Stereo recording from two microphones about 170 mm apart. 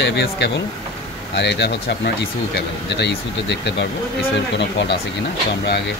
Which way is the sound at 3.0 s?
90° left.